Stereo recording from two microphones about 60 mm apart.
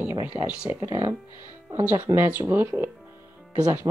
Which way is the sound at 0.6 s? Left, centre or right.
Right.